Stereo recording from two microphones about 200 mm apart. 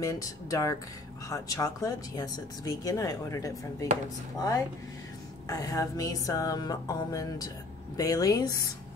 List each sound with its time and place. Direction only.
0.0 s music: 15° left (ahead or behind)
4.4 s speech: 20° left (ahead or behind)
5.5 s music: 15° left (ahead or behind)